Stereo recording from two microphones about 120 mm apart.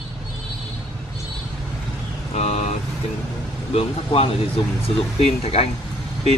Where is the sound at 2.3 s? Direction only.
60° left (ahead or behind).